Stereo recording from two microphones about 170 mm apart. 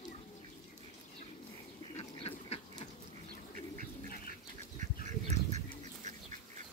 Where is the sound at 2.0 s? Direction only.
40° left (ahead or behind).